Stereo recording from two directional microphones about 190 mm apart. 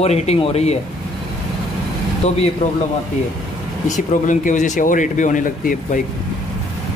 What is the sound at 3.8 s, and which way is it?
Speech, 40° left (ahead or behind).